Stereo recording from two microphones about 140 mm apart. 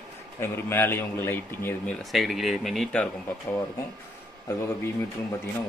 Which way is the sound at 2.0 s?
Centre (ahead or behind).